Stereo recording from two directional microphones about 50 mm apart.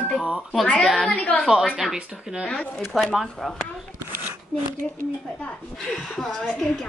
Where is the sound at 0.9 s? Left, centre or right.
Centre.